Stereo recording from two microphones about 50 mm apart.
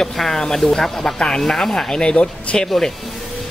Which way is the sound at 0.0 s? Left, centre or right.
Centre.